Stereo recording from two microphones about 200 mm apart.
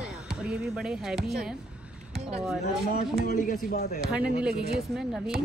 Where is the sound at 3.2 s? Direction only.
45° left (ahead or behind).